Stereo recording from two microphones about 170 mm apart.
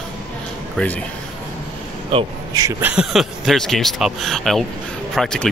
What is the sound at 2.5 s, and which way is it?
Speech, 20° right (ahead or behind).